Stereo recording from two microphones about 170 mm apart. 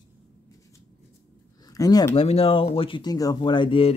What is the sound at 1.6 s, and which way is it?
Speech, 20° left (ahead or behind).